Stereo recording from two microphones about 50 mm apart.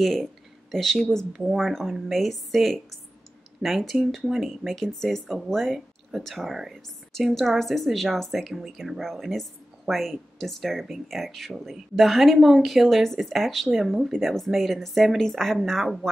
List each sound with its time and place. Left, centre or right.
0.0 s a woman's voice: centre